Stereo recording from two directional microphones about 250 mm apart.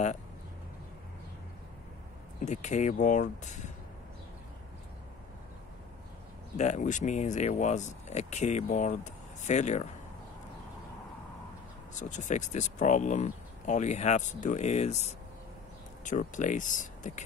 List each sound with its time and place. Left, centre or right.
2.4 s speech: left
6.5 s speech: left
11.9 s speech: left